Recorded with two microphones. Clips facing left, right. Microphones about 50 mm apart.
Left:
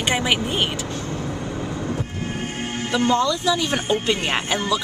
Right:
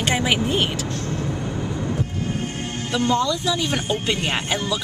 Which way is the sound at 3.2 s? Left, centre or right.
Centre.